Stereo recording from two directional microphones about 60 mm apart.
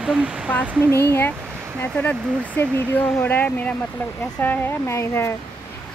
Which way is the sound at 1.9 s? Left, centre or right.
Centre.